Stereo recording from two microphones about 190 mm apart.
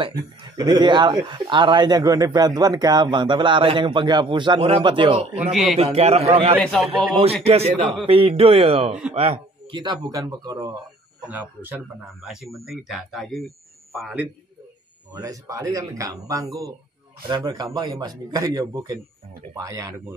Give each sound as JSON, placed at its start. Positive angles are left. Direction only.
{"t": 0.0, "sound": "speech", "side_deg": -25}
{"t": 5.4, "sound": "speech", "side_deg": 0}
{"t": 5.8, "sound": "a man's voice", "side_deg": -30}
{"t": 6.6, "sound": "speech", "side_deg": 5}
{"t": 7.4, "sound": "speech", "side_deg": -30}
{"t": 15.1, "sound": "speech", "side_deg": -20}